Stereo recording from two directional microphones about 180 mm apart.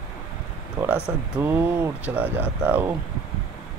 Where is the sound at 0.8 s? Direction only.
10° right (ahead or behind).